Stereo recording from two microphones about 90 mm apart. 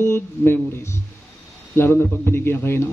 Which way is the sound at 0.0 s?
25° left (ahead or behind).